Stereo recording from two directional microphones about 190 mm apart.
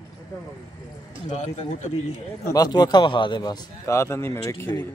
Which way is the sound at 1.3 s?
35° left (ahead or behind).